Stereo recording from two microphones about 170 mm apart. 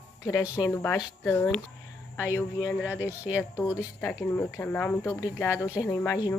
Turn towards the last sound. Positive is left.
turn(degrees=20)  # may be behind; listen again after turning